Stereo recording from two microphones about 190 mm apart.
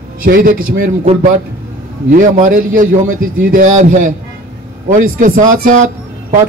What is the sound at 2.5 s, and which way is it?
A man's voice, 45° right (ahead or behind).